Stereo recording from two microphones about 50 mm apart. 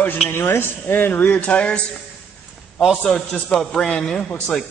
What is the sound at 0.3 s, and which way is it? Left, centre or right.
Speech, left.